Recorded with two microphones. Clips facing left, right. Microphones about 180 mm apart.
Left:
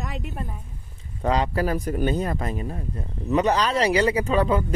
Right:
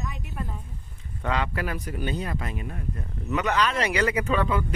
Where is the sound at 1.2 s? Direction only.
35° left (ahead or behind).